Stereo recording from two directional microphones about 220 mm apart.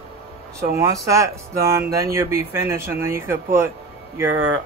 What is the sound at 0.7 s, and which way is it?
A man's voice, 15° right (ahead or behind).